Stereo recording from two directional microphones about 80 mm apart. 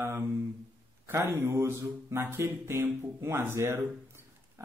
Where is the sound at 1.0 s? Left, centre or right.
Right.